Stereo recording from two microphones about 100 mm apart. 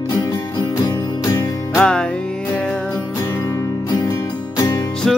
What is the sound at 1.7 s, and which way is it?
Music, 10° left (ahead or behind).